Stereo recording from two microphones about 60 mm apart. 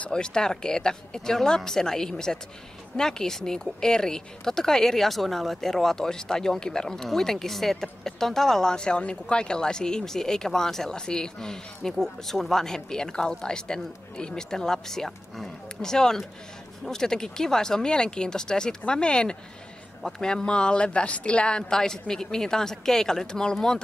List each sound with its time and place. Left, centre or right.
0.1 s speech: centre